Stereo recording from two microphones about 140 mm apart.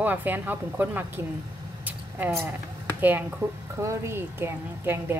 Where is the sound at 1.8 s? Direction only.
10° right (ahead or behind).